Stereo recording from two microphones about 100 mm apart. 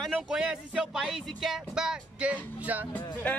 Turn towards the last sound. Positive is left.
turn(degrees=15)  # may be behind; listen again after turning